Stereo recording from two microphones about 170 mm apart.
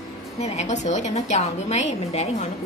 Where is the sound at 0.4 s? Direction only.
40° left (ahead or behind).